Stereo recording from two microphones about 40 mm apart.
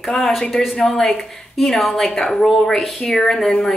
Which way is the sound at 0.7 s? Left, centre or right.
Centre.